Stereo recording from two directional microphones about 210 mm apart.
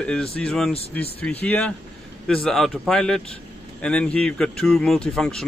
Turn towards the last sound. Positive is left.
turn(degrees=5)  # may be behind; listen again after turning